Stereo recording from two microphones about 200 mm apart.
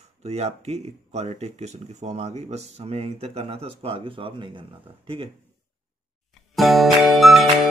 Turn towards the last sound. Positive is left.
turn(degrees=0)  # may be behind; listen again after turning